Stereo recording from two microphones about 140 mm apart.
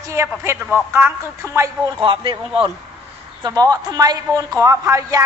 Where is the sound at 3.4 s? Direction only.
25° right (ahead or behind).